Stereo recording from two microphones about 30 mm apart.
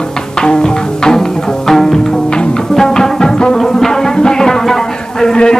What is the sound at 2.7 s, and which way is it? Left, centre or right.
Music, centre.